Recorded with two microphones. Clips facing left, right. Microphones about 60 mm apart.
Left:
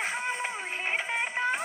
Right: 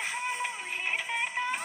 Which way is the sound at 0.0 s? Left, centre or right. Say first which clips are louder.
Left 2 dB; left.